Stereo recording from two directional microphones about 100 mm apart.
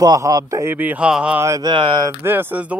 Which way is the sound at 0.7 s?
15° right (ahead or behind).